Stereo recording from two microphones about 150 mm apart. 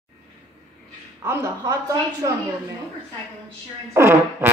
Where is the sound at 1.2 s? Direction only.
20° right (ahead or behind).